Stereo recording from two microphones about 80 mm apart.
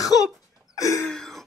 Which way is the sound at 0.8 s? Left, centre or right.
Left.